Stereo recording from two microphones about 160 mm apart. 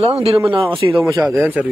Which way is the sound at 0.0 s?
35° right (ahead or behind).